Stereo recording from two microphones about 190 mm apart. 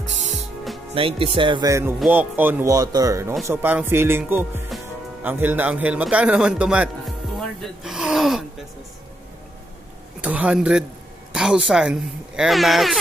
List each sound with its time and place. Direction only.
0.9 s a man's voice: 30° right (ahead or behind); by 8.5 s centre (ahead or behind)
10.2 s speech: 5° right (ahead or behind)